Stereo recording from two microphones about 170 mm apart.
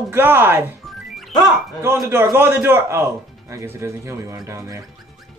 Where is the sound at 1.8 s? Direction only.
15° right (ahead or behind).